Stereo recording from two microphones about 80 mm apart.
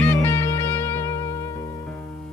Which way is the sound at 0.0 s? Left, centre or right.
Left.